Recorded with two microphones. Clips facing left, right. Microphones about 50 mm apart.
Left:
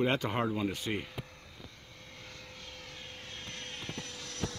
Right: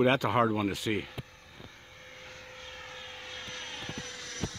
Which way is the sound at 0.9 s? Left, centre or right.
Centre.